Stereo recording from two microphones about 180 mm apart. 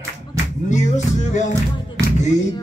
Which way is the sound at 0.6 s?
40° left (ahead or behind).